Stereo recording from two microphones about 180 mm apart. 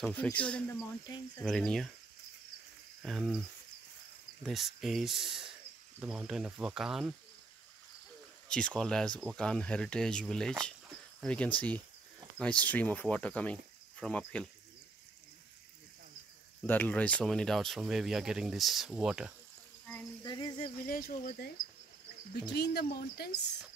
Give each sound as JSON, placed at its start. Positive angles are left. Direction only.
{"t": 0.0, "sound": "speech", "side_deg": 10}
{"t": 1.0, "sound": "a sound", "side_deg": 20}
{"t": 1.4, "sound": "speech", "side_deg": 5}
{"t": 3.0, "sound": "cricket", "side_deg": 0}
{"t": 4.4, "sound": "speech", "side_deg": 0}
{"t": 8.5, "sound": "speech", "side_deg": 5}
{"t": 16.6, "sound": "speech", "side_deg": 10}
{"t": 20.2, "sound": "a sound", "side_deg": 20}
{"t": 20.8, "sound": "speech", "side_deg": 55}
{"t": 22.5, "sound": "speech", "side_deg": 65}